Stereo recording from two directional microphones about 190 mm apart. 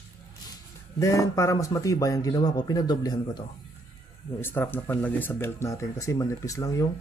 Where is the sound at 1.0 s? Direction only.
15° left (ahead or behind).